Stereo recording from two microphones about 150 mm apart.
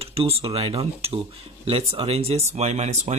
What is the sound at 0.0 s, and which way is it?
Speech, 40° right (ahead or behind).